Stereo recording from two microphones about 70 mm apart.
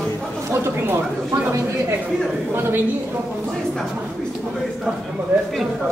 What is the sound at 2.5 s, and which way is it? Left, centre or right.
Speech, right.